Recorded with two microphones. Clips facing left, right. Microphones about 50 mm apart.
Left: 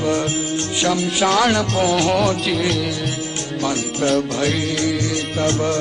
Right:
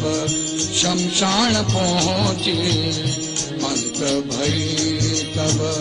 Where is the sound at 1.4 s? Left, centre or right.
Left.